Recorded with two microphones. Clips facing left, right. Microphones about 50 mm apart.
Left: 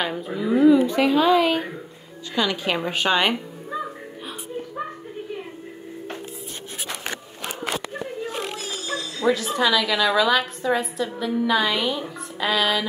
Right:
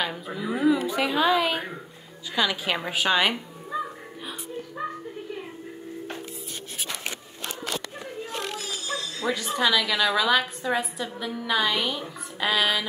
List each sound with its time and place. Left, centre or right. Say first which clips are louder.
0.0 s a woman's voice: left 4 dB; centre
8.3 s children playing: left 3 dB; left
9.3 s a woman's voice: left 3 dB; centre